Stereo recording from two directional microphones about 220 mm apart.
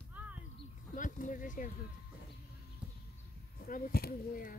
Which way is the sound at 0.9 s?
35° left (ahead or behind).